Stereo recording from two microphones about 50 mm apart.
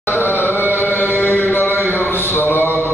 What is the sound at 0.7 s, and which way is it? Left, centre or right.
Chant, left.